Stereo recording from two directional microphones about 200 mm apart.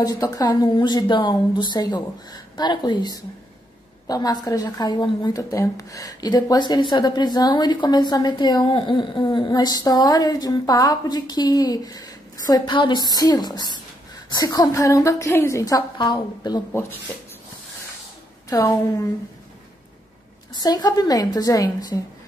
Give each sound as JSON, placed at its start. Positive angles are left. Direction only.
{"t": 0.0, "sound": "a woman's voice", "side_deg": 20}
{"t": 18.5, "sound": "a woman's voice", "side_deg": 15}
{"t": 20.5, "sound": "a woman's voice", "side_deg": 20}